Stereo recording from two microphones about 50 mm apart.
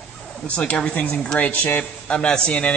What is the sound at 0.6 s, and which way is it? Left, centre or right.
A man's voice, left.